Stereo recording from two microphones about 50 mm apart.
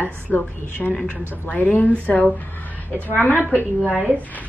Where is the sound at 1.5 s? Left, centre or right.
Left.